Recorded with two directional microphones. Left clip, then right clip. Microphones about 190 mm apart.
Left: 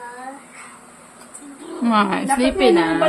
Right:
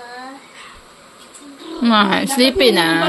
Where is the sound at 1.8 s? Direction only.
10° right (ahead or behind).